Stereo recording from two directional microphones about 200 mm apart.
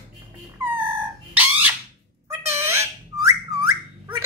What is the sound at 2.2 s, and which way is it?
Whistling, 15° right (ahead or behind).